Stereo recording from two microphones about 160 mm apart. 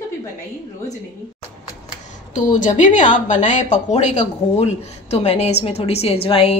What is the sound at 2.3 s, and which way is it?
Speech, 50° left (ahead or behind).